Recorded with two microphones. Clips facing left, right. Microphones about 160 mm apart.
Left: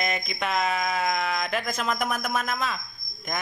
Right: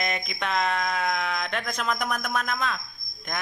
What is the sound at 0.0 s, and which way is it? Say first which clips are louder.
Music: left 1 dB; centre (ahead or behind).